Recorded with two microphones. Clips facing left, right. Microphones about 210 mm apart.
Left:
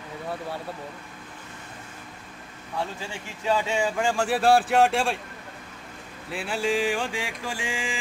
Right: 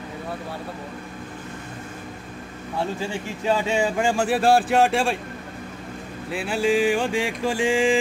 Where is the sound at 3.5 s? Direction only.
20° right (ahead or behind).